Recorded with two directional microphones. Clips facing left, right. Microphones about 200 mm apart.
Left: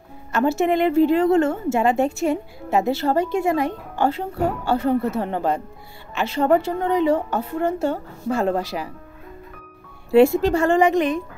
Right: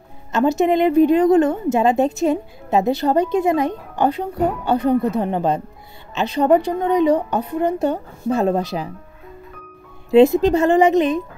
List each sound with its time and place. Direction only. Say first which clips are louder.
0.3 s a woman's voice: right 3 dB; 20° right (ahead or behind)
10.1 s a woman's voice: right 3 dB; 20° right (ahead or behind)